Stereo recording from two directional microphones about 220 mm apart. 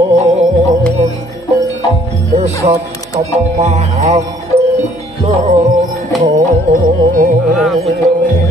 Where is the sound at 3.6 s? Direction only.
30° right (ahead or behind).